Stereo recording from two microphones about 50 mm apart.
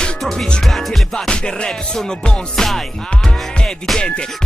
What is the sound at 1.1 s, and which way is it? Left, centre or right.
Music, centre.